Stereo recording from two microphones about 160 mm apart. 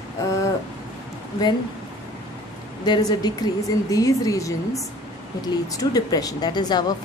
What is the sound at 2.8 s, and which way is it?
Speech, 25° left (ahead or behind).